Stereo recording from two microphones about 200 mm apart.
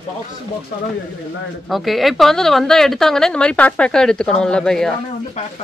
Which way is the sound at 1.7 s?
Centre (ahead or behind).